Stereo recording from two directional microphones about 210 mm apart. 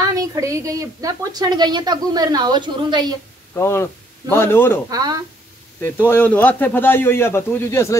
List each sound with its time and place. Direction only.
0.0 s a woman's voice: 15° right (ahead or behind)
3.5 s a man's voice: 15° left (ahead or behind)
4.8 s speech: 15° right (ahead or behind)
6.0 s a man's voice: 10° left (ahead or behind)